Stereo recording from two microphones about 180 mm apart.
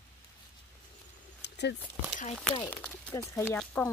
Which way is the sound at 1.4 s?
70° left (ahead or behind).